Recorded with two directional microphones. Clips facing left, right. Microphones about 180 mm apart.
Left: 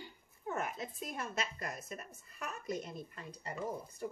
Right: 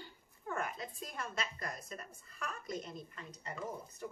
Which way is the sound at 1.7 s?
5° left (ahead or behind).